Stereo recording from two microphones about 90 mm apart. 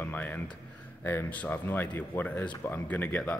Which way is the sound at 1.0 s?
20° left (ahead or behind).